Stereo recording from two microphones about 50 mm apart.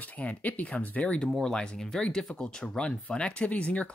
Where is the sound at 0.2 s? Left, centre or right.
Left.